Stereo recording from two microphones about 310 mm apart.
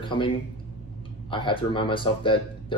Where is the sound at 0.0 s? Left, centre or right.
Centre.